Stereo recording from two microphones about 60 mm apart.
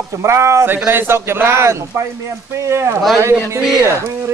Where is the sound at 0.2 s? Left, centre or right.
Right.